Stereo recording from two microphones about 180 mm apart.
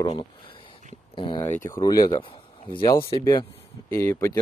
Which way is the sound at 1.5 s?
15° left (ahead or behind).